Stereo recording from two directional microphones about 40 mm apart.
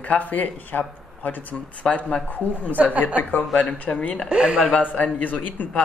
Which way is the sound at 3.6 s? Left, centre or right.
Left.